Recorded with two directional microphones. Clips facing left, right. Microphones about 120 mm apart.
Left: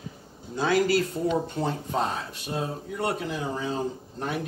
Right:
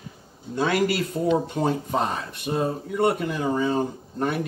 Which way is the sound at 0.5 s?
70° right (ahead or behind).